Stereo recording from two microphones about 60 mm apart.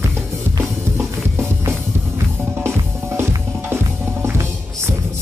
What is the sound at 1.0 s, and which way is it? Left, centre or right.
Music, right.